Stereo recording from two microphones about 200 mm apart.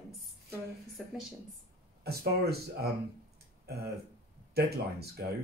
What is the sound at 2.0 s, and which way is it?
Speech, 50° right (ahead or behind).